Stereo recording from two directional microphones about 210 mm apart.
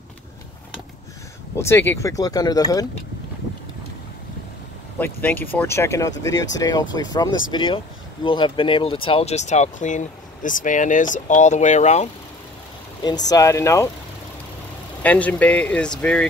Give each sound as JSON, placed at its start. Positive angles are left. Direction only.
{"t": 1.6, "sound": "speech", "side_deg": 10}
{"t": 4.9, "sound": "speech", "side_deg": 10}
{"t": 7.2, "sound": "speech", "side_deg": 65}
{"t": 7.5, "sound": "speech", "side_deg": 25}
{"t": 13.0, "sound": "speech", "side_deg": 20}
{"t": 15.0, "sound": "speech", "side_deg": 5}